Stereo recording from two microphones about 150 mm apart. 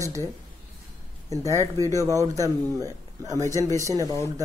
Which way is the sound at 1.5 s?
20° right (ahead or behind).